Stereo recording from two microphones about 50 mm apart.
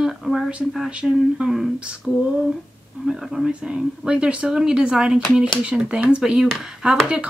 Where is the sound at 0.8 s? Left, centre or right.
Right.